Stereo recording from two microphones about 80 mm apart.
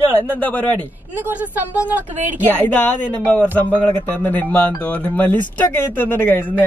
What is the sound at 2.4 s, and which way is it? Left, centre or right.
A man's voice, left.